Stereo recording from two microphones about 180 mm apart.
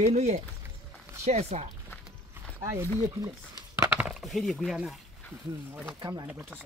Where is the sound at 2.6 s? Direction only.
15° right (ahead or behind).